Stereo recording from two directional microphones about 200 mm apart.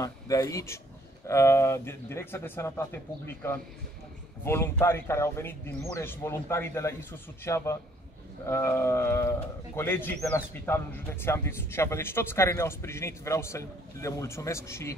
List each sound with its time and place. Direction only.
0.0 s a man's voice: 15° left (ahead or behind)